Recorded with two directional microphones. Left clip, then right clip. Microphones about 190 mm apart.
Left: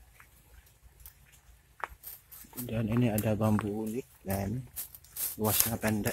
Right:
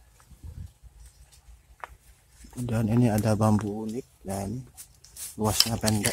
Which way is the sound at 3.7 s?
Centre (ahead or behind).